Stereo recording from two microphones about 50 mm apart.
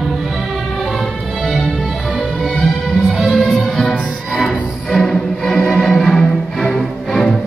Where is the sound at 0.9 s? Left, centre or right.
Centre.